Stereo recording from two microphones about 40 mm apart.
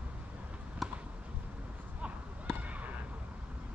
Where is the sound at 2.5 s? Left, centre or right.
Right.